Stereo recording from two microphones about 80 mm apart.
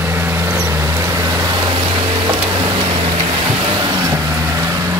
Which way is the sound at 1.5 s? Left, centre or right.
Right.